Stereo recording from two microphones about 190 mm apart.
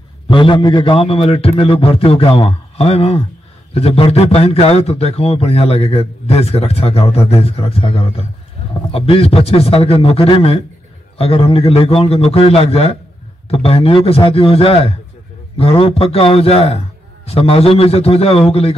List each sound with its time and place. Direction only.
0.3 s a man's voice: 25° left (ahead or behind)